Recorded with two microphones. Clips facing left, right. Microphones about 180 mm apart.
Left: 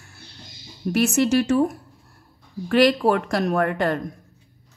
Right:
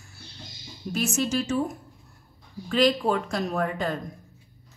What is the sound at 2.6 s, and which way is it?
A woman's voice, 70° left (ahead or behind).